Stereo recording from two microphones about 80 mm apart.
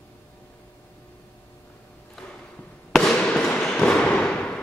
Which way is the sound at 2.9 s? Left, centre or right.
Centre.